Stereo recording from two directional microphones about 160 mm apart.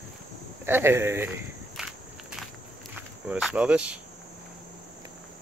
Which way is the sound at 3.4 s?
5° right (ahead or behind).